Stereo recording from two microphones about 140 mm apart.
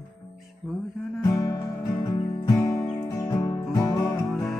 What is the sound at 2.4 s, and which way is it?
Music, 25° left (ahead or behind).